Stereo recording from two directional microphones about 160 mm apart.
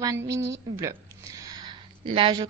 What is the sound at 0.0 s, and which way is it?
A woman's voice, 20° right (ahead or behind).